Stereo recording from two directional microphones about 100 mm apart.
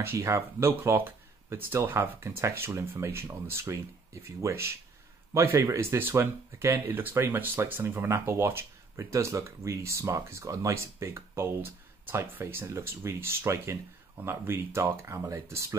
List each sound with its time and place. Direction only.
0.0 s speech: 25° right (ahead or behind)